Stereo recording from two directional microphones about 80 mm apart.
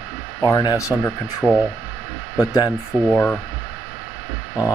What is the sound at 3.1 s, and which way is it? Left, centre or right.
Speech, centre.